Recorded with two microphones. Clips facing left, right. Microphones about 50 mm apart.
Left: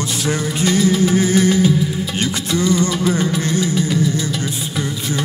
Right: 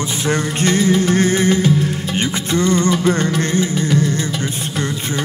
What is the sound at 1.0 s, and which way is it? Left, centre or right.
Music, right.